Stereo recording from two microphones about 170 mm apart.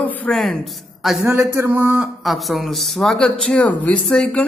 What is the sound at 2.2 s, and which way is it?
Speech, centre (ahead or behind).